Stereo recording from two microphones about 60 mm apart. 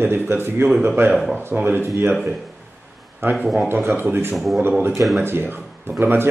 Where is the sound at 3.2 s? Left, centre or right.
Right.